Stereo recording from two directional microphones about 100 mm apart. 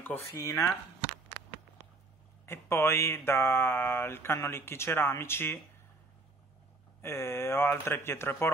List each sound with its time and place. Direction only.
0.0 s speech: 20° left (ahead or behind)
2.4 s speech: 25° left (ahead or behind)
7.0 s speech: 25° left (ahead or behind)